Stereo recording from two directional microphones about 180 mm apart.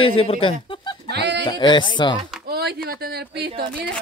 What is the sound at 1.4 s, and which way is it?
Speech, 25° left (ahead or behind).